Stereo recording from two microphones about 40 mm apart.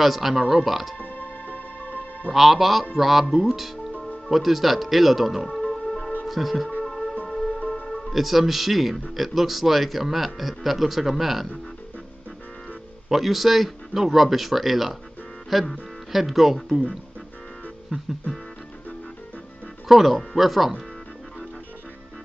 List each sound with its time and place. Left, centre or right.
0.0 s a man's voice: centre
0.4 s speech: centre
0.7 s a man's voice: centre
0.9 s music: left
2.3 s a man's voice: centre
5.5 s music: centre
6.2 s speech: centre
6.8 s music: centre
7.8 s a man's voice: centre
13.1 s a man's voice: centre
19.9 s a man's voice: centre